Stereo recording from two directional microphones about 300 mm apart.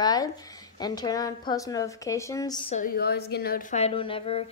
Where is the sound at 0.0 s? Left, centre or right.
Centre.